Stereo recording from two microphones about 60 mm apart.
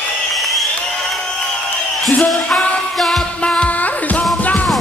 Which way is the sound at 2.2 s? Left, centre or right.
Centre.